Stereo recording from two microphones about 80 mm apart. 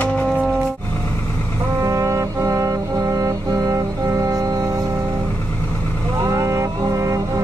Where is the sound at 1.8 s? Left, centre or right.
Right.